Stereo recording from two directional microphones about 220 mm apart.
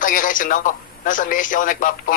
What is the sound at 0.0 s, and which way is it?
A man's voice, 40° left (ahead or behind).